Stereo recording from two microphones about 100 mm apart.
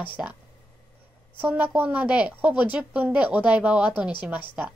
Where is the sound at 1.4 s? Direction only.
15° right (ahead or behind).